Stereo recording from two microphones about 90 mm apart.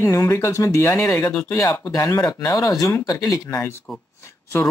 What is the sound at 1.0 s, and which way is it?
Speech, 40° left (ahead or behind).